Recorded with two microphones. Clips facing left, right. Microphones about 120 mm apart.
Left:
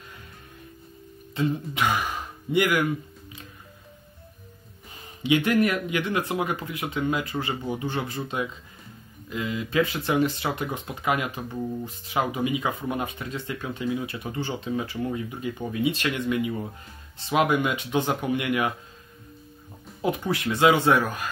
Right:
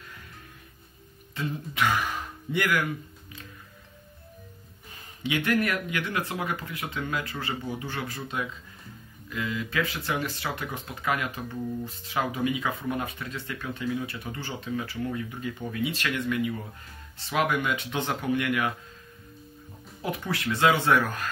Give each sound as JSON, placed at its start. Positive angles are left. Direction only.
{"t": 1.3, "sound": "speech", "side_deg": 20}
{"t": 5.2, "sound": "speech", "side_deg": 20}
{"t": 20.0, "sound": "speech", "side_deg": 20}